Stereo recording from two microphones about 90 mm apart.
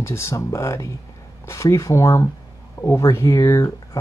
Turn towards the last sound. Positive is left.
turn(degrees=35)  # may be behind; listen again after turning